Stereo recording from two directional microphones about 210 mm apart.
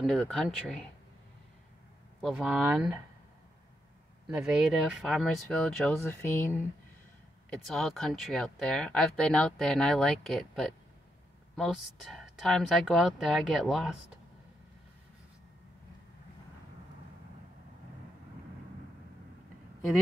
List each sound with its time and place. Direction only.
0.0 s speech: centre (ahead or behind)
2.2 s speech: 5° right (ahead or behind)
4.3 s speech: 5° right (ahead or behind)